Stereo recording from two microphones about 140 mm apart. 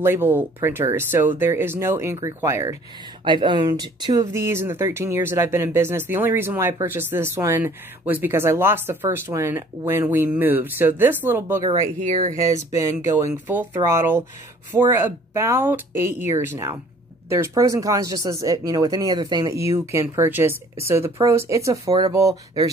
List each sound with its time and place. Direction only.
0.0 s speech: 15° right (ahead or behind)
3.3 s speech: 35° right (ahead or behind); by 11.6 s 15° right (ahead or behind)
12.1 s speech: 65° right (ahead or behind)
13.0 s speech: 25° right (ahead or behind)